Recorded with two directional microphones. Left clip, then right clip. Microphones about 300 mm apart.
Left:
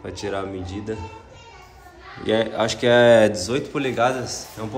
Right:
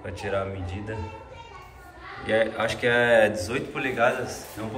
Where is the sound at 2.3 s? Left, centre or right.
Centre.